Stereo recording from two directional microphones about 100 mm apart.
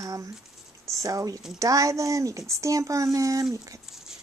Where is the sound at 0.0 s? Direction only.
35° right (ahead or behind).